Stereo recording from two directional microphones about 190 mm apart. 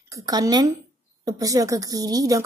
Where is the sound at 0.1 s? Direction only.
20° right (ahead or behind).